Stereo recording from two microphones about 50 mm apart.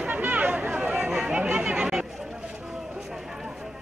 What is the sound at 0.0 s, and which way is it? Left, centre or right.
Chatter, right.